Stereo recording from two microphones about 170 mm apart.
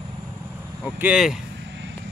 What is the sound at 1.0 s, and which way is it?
Speech, 5° right (ahead or behind).